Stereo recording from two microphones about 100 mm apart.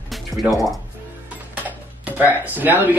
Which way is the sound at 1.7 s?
15° right (ahead or behind).